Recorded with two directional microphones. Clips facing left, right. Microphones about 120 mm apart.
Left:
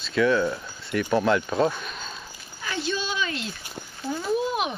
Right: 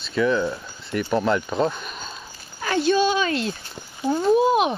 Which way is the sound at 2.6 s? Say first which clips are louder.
Right 10 dB; 55° right (ahead or behind).